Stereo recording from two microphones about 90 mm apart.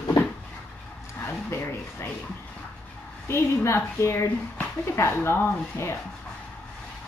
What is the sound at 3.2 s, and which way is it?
Speech, 30° left (ahead or behind).